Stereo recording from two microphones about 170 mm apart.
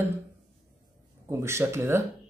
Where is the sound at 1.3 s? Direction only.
15° right (ahead or behind).